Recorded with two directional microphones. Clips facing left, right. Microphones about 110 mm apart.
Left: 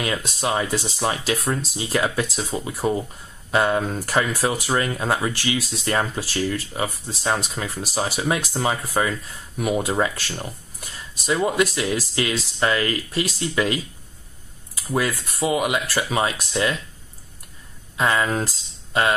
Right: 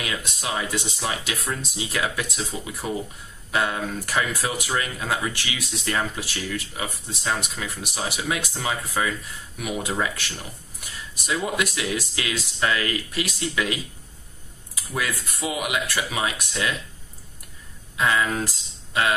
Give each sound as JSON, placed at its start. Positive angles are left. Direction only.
{"t": 0.0, "sound": "speech", "side_deg": 35}
{"t": 14.9, "sound": "speech", "side_deg": 30}
{"t": 17.9, "sound": "speech", "side_deg": 30}